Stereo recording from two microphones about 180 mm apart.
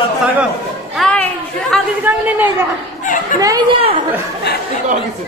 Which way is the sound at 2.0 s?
10° right (ahead or behind).